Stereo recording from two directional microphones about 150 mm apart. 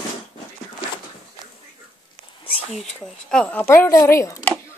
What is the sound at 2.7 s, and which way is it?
Speech, 5° left (ahead or behind).